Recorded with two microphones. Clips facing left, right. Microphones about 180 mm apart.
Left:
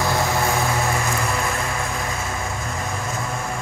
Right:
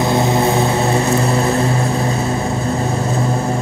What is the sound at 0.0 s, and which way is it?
Vehicle, 20° right (ahead or behind).